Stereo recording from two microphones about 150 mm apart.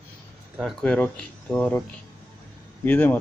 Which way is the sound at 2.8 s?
15° left (ahead or behind).